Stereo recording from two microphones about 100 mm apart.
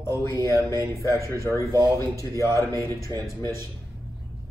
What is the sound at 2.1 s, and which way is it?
Speech, 30° left (ahead or behind).